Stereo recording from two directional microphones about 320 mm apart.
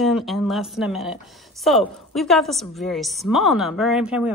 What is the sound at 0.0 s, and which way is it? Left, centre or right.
A woman's voice, centre.